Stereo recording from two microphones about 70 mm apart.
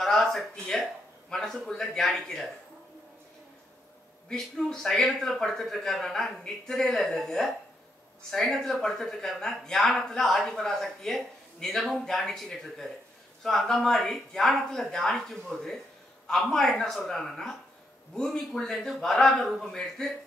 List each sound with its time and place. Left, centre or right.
0.0 s speech: centre
4.3 s a man's voice: centre